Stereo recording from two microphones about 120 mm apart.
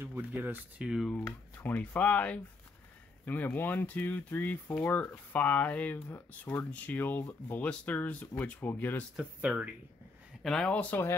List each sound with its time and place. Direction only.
0.0 s speech: 15° right (ahead or behind)
0.8 s speech: 5° right (ahead or behind)
1.1 s speech: 15° left (ahead or behind)
9.1 s speech: 10° right (ahead or behind)
10.4 s speech: 5° left (ahead or behind)